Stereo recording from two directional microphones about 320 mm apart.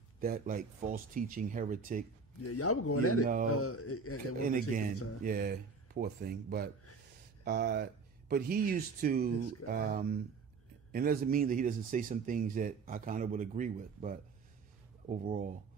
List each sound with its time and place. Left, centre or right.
0.2 s speech: right
2.4 s speech: left
4.5 s speech: right